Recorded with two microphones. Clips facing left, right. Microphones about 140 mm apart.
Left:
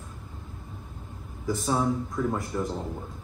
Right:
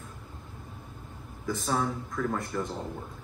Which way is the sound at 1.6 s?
20° left (ahead or behind).